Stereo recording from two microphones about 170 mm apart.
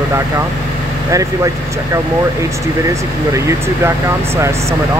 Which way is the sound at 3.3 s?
15° right (ahead or behind).